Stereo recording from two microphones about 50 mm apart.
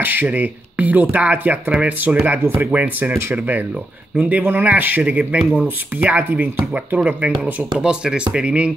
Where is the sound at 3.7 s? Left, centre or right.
Right.